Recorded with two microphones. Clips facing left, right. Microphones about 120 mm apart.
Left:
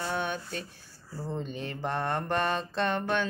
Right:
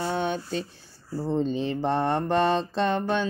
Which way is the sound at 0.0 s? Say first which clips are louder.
Right 5 dB; 25° right (ahead or behind).